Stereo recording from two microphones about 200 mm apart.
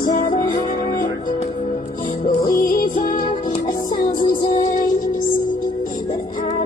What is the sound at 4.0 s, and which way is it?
Music, 45° left (ahead or behind).